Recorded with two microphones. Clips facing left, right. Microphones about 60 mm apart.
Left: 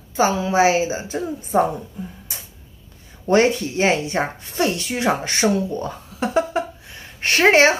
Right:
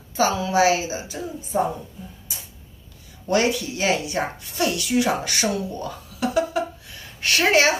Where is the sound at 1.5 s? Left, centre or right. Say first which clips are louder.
Left 4 dB; left.